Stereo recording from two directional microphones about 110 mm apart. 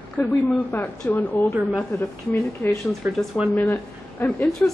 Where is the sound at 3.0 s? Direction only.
20° right (ahead or behind).